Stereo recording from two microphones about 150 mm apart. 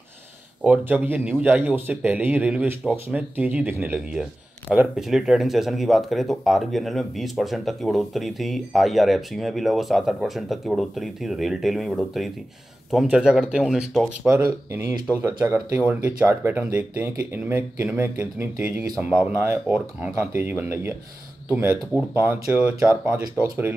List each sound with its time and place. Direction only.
0.7 s speech: 10° right (ahead or behind)
3.2 s speech: 10° right (ahead or behind)
14.2 s speech: 20° right (ahead or behind)
15.9 s speech: 15° right (ahead or behind)